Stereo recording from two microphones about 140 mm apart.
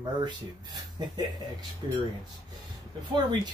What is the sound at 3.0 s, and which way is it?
Speech, 30° right (ahead or behind).